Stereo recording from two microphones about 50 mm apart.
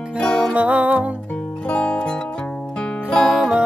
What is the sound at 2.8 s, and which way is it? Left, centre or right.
Music, centre.